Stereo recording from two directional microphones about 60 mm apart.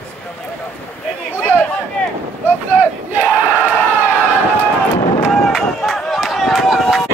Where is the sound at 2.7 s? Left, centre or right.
Right.